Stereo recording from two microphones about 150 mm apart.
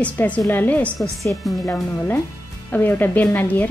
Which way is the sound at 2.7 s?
15° left (ahead or behind).